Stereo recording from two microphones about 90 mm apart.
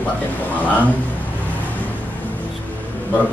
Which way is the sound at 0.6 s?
15° left (ahead or behind).